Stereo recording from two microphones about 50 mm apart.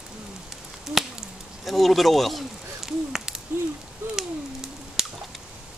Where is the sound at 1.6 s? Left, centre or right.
Centre.